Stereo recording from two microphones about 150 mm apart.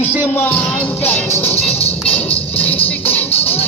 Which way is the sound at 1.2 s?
40° left (ahead or behind).